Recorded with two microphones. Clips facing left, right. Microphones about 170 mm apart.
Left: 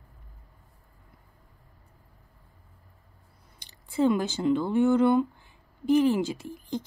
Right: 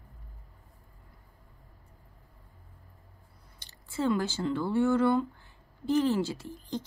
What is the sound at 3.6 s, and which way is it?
A woman's voice, 15° left (ahead or behind).